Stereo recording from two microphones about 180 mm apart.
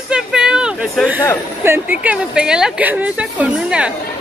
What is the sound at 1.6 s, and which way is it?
A woman's voice, 10° right (ahead or behind).